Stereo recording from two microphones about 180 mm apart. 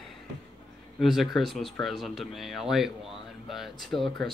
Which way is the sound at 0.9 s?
Centre (ahead or behind).